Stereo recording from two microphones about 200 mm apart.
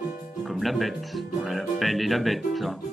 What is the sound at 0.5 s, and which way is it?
Speech, centre (ahead or behind).